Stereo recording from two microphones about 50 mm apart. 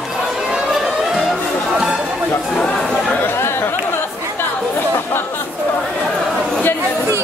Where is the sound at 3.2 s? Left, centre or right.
Left.